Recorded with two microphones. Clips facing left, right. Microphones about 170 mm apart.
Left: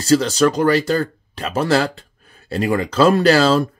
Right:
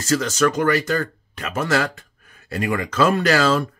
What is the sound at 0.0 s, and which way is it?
Speech, 35° left (ahead or behind).